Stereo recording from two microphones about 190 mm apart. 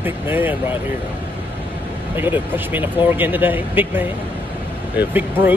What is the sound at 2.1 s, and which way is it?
Speech, 10° right (ahead or behind).